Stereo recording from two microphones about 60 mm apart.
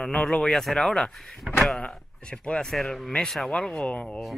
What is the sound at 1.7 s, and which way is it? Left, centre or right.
Speech, centre.